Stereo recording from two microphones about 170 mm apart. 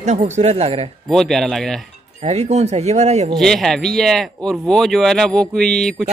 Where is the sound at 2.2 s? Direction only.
40° right (ahead or behind).